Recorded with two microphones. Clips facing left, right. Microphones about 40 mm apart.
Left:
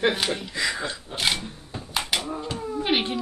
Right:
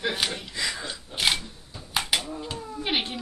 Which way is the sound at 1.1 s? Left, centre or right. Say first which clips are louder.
Right 2 dB; left.